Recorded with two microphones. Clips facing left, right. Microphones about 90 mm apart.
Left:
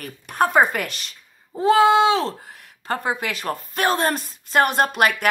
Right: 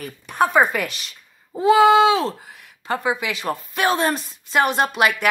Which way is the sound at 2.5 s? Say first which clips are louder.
Right 1 dB; 45° left (ahead or behind).